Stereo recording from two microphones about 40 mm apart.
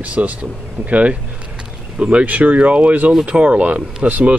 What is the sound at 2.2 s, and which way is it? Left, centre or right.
Speech, right.